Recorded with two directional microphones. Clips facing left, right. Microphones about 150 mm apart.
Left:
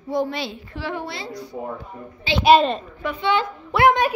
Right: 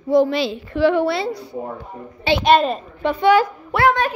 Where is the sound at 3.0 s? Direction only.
30° right (ahead or behind).